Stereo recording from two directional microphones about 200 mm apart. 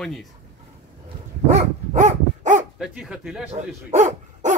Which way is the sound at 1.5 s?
35° right (ahead or behind).